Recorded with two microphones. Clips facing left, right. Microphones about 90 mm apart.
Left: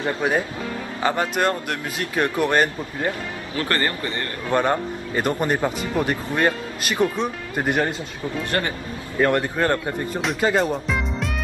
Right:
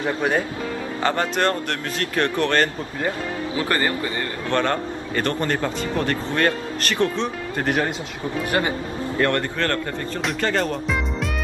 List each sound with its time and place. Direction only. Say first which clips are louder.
0.0 s speech: even; 5° left (ahead or behind)
3.5 s speech: even; 15° right (ahead or behind)
4.5 s speech: left 2 dB; 10° left (ahead or behind)
8.5 s speech: right 3 dB; 15° right (ahead or behind)
9.2 s speech: left 3 dB; 10° left (ahead or behind)
10.2 s speech: left 2 dB; 5° left (ahead or behind)